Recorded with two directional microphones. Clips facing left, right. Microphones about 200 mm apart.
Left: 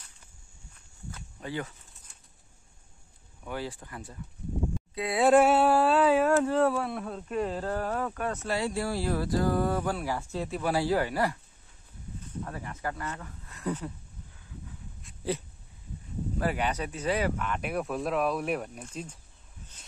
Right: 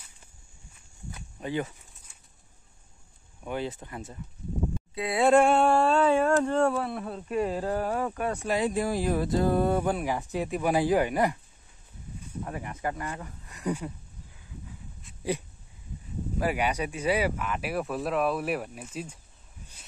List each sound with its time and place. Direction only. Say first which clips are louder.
0.7 s walk: right 1 dB; 20° right (ahead or behind)
3.4 s speech: right 3 dB; 20° right (ahead or behind)
4.9 s speech: even; centre (ahead or behind)
16.3 s speech: right 2 dB; 10° right (ahead or behind)